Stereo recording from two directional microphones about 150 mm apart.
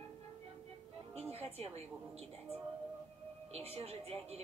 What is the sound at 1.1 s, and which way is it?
A woman's voice, 40° right (ahead or behind).